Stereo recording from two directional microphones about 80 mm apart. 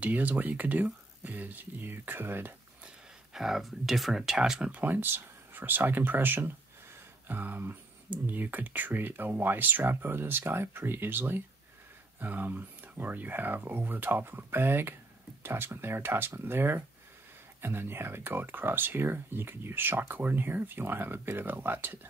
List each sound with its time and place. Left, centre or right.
0.0 s speech: right
3.3 s speech: centre; by 21.9 s right